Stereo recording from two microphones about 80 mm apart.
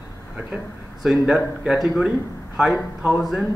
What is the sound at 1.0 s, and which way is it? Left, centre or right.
Speech, centre.